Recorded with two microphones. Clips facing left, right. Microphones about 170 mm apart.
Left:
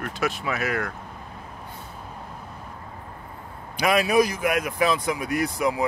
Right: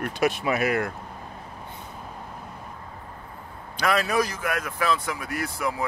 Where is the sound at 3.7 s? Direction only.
15° left (ahead or behind).